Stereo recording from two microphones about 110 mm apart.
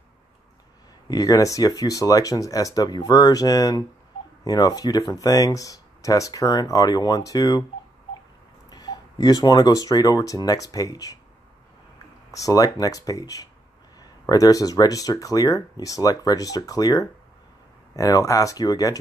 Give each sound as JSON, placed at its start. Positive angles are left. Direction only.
{"t": 1.0, "sound": "speech", "side_deg": 35}
{"t": 8.6, "sound": "speech", "side_deg": 40}
{"t": 12.3, "sound": "speech", "side_deg": 30}